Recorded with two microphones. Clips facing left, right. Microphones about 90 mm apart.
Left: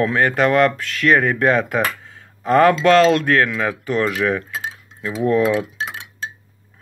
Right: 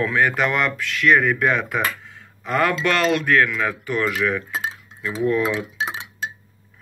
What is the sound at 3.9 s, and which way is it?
Speech, 30° left (ahead or behind).